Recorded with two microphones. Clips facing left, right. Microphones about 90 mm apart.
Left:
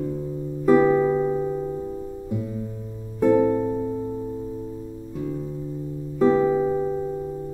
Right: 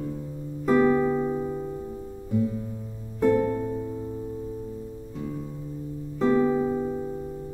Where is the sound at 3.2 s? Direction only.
10° left (ahead or behind).